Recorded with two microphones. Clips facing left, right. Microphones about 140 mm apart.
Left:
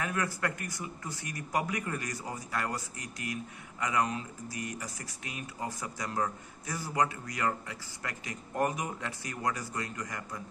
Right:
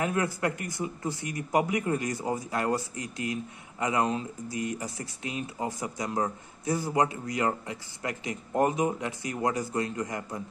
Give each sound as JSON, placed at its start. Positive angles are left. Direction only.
{"t": 0.0, "sound": "speech", "side_deg": -25}